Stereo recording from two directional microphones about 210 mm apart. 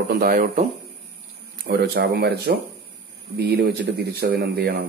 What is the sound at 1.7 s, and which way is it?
Speech, 50° right (ahead or behind).